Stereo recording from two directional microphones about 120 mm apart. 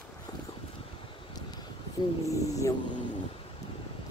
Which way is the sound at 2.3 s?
25° left (ahead or behind).